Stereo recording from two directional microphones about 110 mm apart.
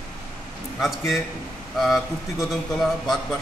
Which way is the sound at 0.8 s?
Centre (ahead or behind).